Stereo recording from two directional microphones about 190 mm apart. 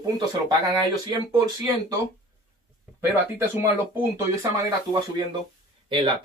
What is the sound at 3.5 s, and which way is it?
Speech, 10° right (ahead or behind).